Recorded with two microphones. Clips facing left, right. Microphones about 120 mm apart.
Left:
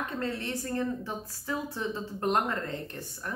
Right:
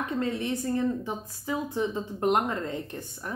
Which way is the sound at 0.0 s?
15° right (ahead or behind).